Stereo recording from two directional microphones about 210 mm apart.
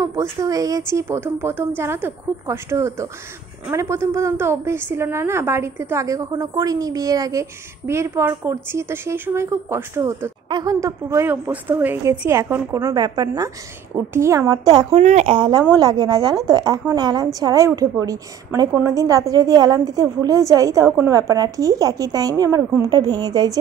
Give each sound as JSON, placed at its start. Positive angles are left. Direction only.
{"t": 0.0, "sound": "a woman's voice", "side_deg": -15}
{"t": 14.9, "sound": "a woman's voice", "side_deg": -35}